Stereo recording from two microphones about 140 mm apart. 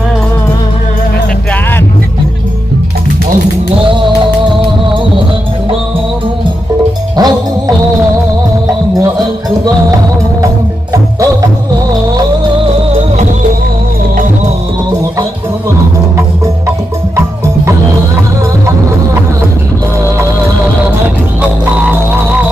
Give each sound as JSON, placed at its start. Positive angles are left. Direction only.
{"t": 3.8, "sound": "music", "side_deg": -35}
{"t": 7.2, "sound": "music", "side_deg": -30}
{"t": 10.4, "sound": "music", "side_deg": -20}
{"t": 12.6, "sound": "music", "side_deg": -55}
{"t": 21.9, "sound": "music", "side_deg": -15}